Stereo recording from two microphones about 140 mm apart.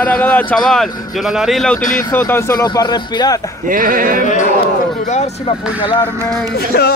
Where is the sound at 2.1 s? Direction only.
20° left (ahead or behind).